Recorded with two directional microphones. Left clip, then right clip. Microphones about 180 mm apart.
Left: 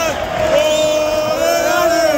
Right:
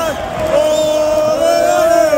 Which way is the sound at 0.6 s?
35° right (ahead or behind).